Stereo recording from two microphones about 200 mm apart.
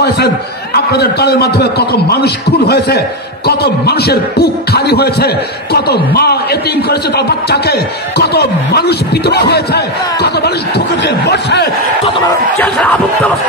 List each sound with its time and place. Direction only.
0.7 s speech: 55° left (ahead or behind)
12.5 s crowd: 5° left (ahead or behind)